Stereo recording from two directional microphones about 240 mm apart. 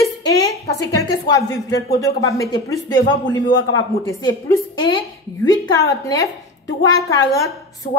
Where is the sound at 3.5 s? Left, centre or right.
Left.